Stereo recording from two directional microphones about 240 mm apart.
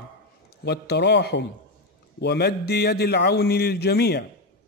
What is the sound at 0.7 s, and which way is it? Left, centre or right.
A man's voice, left.